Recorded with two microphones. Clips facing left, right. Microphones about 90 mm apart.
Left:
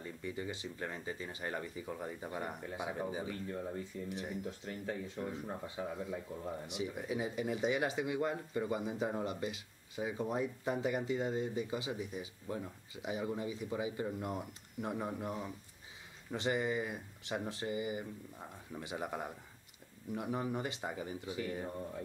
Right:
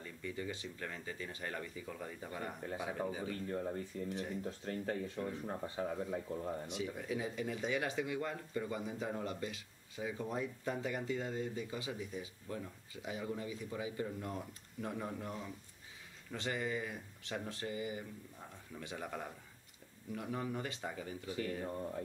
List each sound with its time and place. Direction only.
0.0 s speech: 20° left (ahead or behind)
3.5 s speech: 35° right (ahead or behind)
5.8 s speech: 35° right (ahead or behind)
6.7 s speech: 15° left (ahead or behind)